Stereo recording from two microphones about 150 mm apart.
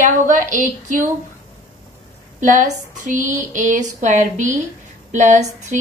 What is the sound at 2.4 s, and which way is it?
Speech, 55° right (ahead or behind).